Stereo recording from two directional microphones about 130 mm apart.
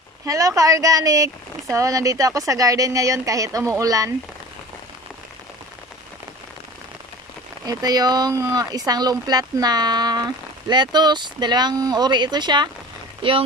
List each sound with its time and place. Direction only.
0.2 s speech: 25° right (ahead or behind)
7.6 s speech: 30° right (ahead or behind)